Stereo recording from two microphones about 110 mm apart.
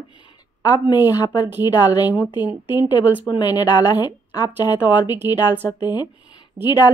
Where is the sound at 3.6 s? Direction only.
40° left (ahead or behind).